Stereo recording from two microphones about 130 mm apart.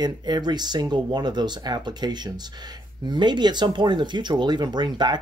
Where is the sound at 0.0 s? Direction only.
35° right (ahead or behind).